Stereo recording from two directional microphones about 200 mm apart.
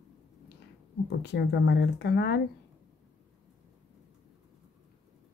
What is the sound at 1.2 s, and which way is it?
Speech, 55° left (ahead or behind).